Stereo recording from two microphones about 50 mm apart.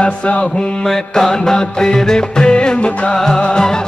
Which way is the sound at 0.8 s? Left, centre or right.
Centre.